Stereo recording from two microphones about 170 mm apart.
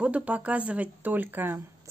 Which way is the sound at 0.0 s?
10° right (ahead or behind).